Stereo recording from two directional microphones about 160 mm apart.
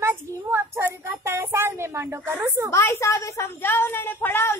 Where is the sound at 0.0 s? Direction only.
15° right (ahead or behind).